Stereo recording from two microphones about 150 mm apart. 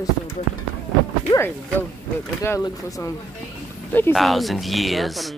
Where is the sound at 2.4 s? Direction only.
20° left (ahead or behind).